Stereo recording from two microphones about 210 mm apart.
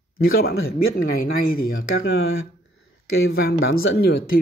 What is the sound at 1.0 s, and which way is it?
Speech, 45° left (ahead or behind).